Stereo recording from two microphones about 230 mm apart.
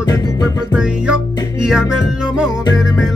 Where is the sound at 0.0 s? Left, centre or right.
Centre.